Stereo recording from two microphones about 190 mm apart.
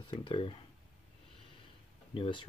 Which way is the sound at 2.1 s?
25° left (ahead or behind).